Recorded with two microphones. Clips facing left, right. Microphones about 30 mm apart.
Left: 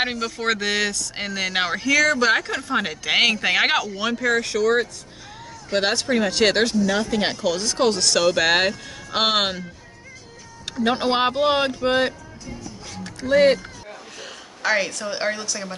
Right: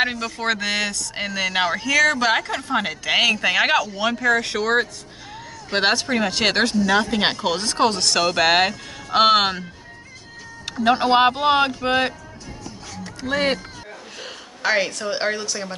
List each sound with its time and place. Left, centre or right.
0.0 s speech: centre
3.4 s speech: centre
4.0 s speech: centre
4.4 s speech: right
5.9 s speech: centre
6.9 s speech: right
7.8 s speech: centre
10.8 s speech: centre
13.3 s a woman's voice: centre